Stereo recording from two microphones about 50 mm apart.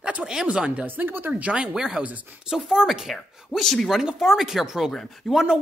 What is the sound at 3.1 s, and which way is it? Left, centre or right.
Speech, centre.